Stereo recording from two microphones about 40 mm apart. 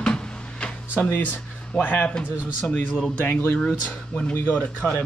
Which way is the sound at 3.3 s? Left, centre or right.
Left.